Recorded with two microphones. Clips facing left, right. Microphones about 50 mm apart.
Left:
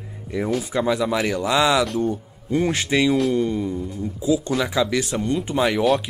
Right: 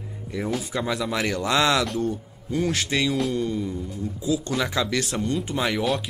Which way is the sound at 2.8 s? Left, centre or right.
Centre.